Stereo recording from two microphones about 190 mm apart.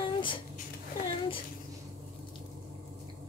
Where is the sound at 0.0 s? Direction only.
25° left (ahead or behind).